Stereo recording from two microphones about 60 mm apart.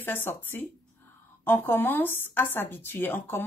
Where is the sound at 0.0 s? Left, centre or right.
Left.